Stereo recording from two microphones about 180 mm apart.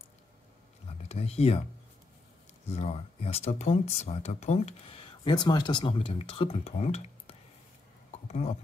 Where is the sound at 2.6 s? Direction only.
35° left (ahead or behind).